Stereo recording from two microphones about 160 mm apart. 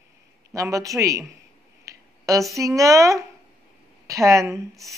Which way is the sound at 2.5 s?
20° right (ahead or behind).